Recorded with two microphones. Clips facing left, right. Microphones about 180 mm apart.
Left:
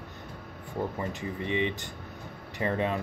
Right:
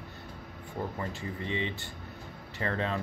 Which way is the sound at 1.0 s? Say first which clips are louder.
Left 3 dB; 20° left (ahead or behind).